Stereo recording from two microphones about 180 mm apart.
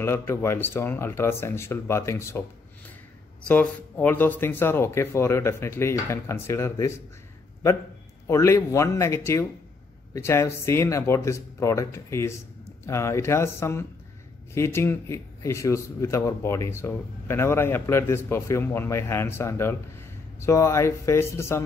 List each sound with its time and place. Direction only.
0.0 s a man's voice: 15° left (ahead or behind)
3.4 s a man's voice: 10° left (ahead or behind)
8.3 s a man's voice: 15° left (ahead or behind)